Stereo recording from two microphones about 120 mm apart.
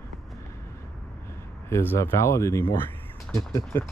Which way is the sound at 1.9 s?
20° left (ahead or behind).